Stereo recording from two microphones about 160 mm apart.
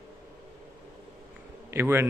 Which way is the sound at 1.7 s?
15° right (ahead or behind).